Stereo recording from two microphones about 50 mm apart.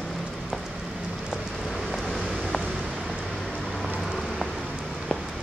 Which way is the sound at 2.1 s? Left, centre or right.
Centre.